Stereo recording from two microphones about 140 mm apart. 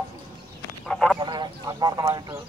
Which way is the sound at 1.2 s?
30° right (ahead or behind).